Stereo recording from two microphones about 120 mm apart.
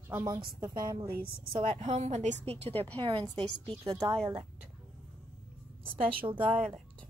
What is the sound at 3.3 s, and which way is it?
Speech, 5° left (ahead or behind).